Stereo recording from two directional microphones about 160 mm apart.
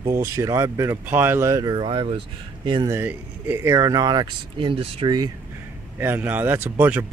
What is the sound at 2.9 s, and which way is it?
Speech, 10° right (ahead or behind).